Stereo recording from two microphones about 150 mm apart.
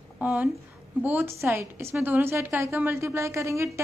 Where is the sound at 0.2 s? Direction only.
10° right (ahead or behind).